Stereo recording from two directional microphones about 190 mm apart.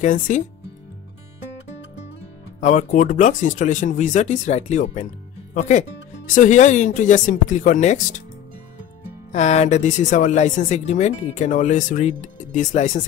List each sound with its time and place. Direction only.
0.0 s speech: 40° left (ahead or behind)
2.6 s speech: 40° left (ahead or behind)
9.3 s speech: 35° left (ahead or behind)